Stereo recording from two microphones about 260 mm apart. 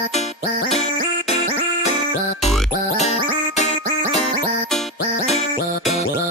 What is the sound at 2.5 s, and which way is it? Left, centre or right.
Music, left.